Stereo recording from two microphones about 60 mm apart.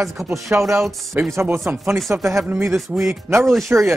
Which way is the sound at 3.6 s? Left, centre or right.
Right.